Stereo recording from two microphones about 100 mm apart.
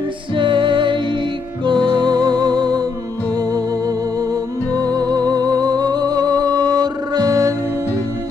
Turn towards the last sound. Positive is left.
turn(degrees=-35)  # may be behind; listen again after turning